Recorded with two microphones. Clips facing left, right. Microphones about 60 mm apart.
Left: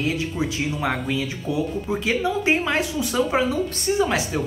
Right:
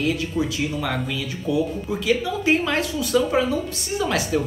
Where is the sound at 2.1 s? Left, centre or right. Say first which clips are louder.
Right 1 dB; left.